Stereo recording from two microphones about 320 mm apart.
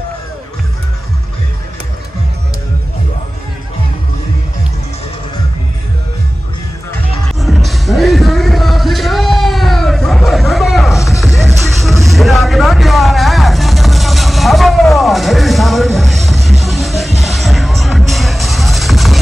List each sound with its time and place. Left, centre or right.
6.9 s music: centre